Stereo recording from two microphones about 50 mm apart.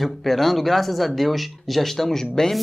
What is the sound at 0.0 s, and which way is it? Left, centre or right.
Speech, centre.